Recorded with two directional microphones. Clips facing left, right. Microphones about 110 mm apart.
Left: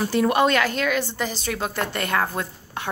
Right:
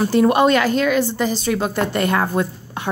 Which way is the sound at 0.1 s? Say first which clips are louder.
Right 6 dB; 30° right (ahead or behind).